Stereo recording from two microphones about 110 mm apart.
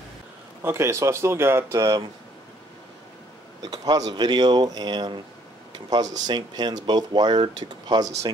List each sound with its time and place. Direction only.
0.6 s speech: 25° right (ahead or behind)
3.6 s speech: 35° right (ahead or behind)